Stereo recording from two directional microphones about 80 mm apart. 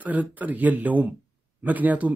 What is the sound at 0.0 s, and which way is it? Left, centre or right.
A man's voice, centre.